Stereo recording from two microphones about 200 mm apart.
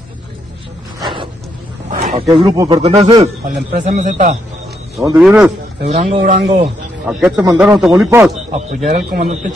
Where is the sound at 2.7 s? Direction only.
30° right (ahead or behind).